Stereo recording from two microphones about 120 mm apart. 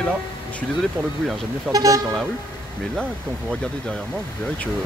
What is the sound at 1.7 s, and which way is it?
Speech, 30° right (ahead or behind).